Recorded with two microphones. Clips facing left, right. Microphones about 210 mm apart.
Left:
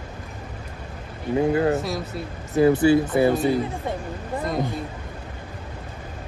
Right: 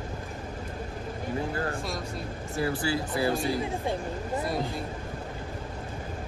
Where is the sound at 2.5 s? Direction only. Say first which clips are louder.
Left 12 dB; 20° left (ahead or behind).